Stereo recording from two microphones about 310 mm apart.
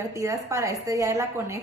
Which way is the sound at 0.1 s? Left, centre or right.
Centre.